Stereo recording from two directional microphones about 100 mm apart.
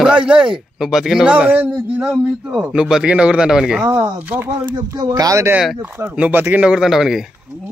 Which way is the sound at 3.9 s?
20° right (ahead or behind).